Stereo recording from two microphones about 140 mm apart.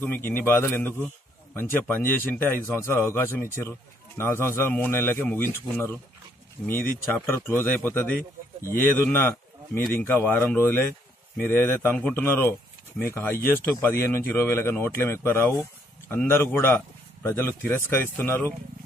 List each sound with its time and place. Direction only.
0.0 s a man's voice: 15° left (ahead or behind)